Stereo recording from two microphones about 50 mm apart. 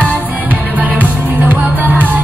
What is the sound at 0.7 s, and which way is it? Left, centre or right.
Music, right.